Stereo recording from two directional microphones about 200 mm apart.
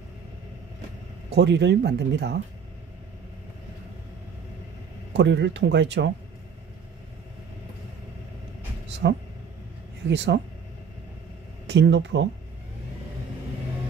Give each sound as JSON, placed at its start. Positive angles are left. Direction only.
{"t": 1.3, "sound": "speech", "side_deg": -60}
{"t": 5.1, "sound": "speech", "side_deg": -60}
{"t": 9.0, "sound": "speech", "side_deg": -60}
{"t": 11.6, "sound": "speech", "side_deg": -60}